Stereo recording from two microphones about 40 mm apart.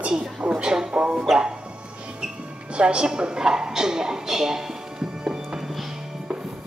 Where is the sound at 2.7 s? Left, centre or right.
Right.